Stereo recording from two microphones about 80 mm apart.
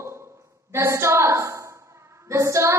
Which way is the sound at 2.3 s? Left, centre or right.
Right.